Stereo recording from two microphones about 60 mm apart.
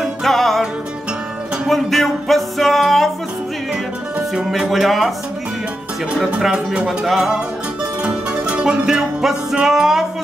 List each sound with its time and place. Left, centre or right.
0.2 s music: centre
1.7 s music: centre
4.5 s speech: centre
6.1 s speech: centre
6.5 s music: centre
8.0 s music: centre